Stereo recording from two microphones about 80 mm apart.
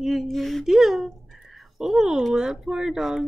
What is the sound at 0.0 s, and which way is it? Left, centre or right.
Speech, centre.